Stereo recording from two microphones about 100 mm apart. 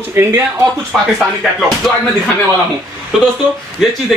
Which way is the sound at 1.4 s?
Centre (ahead or behind).